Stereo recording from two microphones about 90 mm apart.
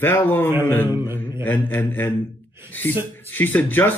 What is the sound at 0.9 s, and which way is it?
Mantra, 25° right (ahead or behind).